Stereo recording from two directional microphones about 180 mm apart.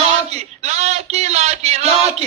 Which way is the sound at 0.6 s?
40° right (ahead or behind).